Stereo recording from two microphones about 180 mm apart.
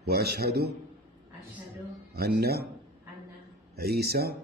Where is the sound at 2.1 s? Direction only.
60° right (ahead or behind).